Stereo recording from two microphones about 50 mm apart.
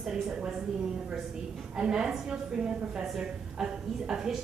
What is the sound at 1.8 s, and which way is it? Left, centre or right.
A woman's voice, centre.